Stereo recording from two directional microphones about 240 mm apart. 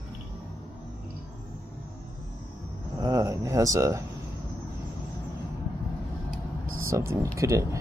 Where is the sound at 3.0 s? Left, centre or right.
Centre.